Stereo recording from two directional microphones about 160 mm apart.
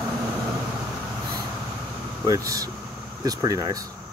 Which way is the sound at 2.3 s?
20° right (ahead or behind).